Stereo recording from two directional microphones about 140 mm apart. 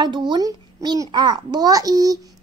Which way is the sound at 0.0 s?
35° right (ahead or behind).